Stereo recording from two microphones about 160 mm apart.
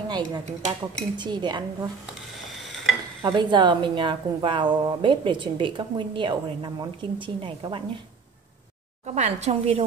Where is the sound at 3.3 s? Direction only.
30° right (ahead or behind).